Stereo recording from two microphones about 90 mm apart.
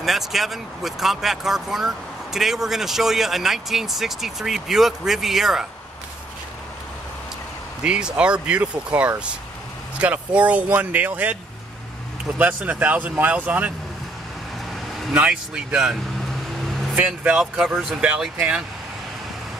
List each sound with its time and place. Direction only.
0.0 s speech: centre (ahead or behind)
7.8 s speech: 10° right (ahead or behind)
12.4 s speech: 15° right (ahead or behind)
15.1 s speech: 10° right (ahead or behind)